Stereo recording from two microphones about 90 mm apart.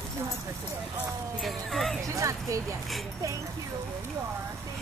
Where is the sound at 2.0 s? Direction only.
35° right (ahead or behind).